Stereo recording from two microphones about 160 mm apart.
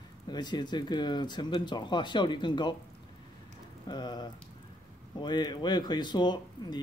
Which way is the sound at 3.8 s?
25° left (ahead or behind).